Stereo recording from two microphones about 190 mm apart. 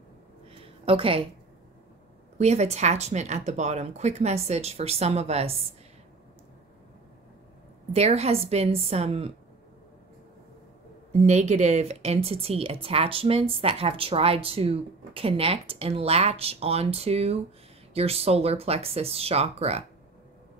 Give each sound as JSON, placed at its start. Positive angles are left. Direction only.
{"t": 0.5, "sound": "a sound", "side_deg": -30}
{"t": 2.3, "sound": "speech", "side_deg": -35}
{"t": 7.9, "sound": "speech", "side_deg": -35}
{"t": 11.1, "sound": "speech", "side_deg": -35}